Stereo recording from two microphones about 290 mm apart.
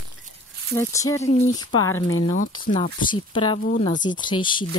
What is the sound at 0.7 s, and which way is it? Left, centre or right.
Speech, centre.